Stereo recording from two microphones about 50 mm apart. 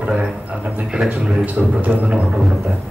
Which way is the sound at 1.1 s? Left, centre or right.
Right.